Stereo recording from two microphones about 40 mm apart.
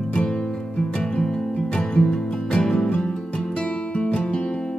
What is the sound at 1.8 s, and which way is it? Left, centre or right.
Music, left.